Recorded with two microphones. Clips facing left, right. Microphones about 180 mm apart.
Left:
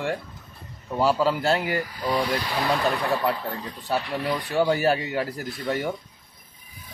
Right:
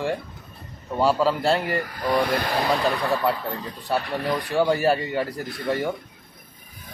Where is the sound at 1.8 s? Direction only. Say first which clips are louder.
Right 3 dB; 60° right (ahead or behind).